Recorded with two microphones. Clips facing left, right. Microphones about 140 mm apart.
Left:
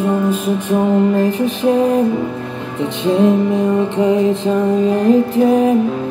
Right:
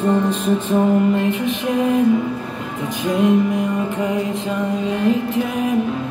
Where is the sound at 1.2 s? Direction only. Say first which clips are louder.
Left 4 dB; 35° left (ahead or behind).